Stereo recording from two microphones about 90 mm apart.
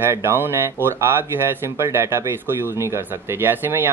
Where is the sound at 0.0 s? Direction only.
25° right (ahead or behind).